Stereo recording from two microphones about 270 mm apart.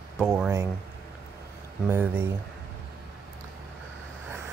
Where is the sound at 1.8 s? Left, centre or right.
Centre.